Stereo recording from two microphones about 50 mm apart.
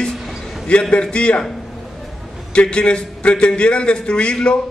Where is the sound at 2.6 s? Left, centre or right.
Centre.